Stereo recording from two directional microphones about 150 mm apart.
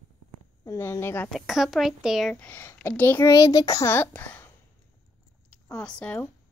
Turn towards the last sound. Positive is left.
turn(degrees=5)  # may be behind; listen again after turning